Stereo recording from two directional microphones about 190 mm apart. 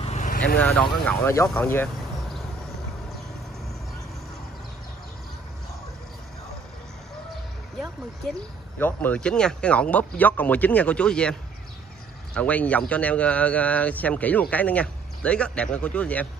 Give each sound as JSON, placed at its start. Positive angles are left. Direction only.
{"t": 0.0, "sound": "vehicle", "side_deg": 40}
{"t": 0.6, "sound": "speech", "side_deg": 5}
{"t": 8.3, "sound": "speech", "side_deg": 10}
{"t": 12.4, "sound": "speech", "side_deg": 5}